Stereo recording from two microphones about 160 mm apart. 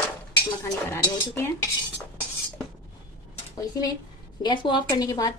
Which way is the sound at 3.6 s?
25° left (ahead or behind).